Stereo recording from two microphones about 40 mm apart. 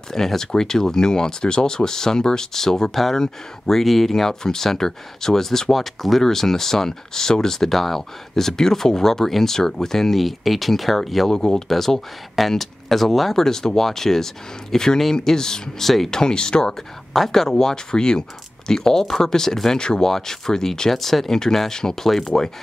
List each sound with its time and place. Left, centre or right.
0.1 s speech: centre
11.2 s speech: centre
11.7 s speech: centre
13.4 s speech: centre
16.2 s speech: centre
17.1 s speech: centre
20.9 s speech: centre; by 22.5 s left